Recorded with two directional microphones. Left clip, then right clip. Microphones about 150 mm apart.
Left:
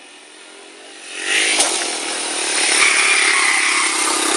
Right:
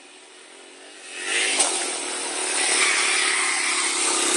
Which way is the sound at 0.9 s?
5° left (ahead or behind).